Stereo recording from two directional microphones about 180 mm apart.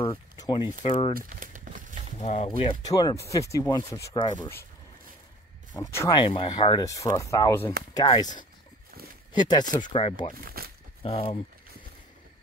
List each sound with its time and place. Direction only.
0.0 s a sound: 25° left (ahead or behind)
1.1 s a sound: 50° right (ahead or behind)
2.1 s speech: 40° left (ahead or behind)
2.9 s speech: 20° left (ahead or behind)
5.8 s speech: 15° left (ahead or behind)
6.2 s speech: 30° left (ahead or behind)
9.3 s speech: 25° left (ahead or behind)
10.3 s a sound: 55° right (ahead or behind)
11.0 s speech: 35° left (ahead or behind)